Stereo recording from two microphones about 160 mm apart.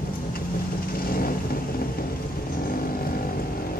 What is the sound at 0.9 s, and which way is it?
Vehicle, 70° left (ahead or behind).